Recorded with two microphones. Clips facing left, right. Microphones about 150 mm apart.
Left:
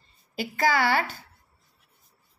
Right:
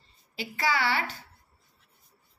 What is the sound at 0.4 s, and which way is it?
Speech, 50° left (ahead or behind).